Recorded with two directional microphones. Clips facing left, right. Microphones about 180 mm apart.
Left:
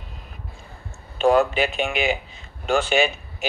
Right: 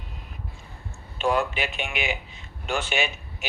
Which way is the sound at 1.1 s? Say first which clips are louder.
Left 7 dB; 40° left (ahead or behind).